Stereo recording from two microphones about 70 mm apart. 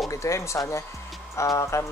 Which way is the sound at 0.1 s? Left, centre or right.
Left.